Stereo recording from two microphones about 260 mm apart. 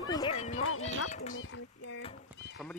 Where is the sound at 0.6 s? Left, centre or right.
Left.